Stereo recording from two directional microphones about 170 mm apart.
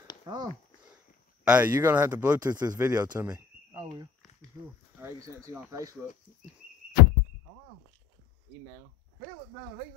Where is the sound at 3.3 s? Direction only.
20° right (ahead or behind).